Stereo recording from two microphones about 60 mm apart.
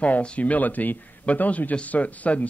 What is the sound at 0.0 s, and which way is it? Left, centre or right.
Speech, centre.